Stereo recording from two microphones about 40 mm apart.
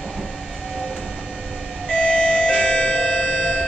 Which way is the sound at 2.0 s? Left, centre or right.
Centre.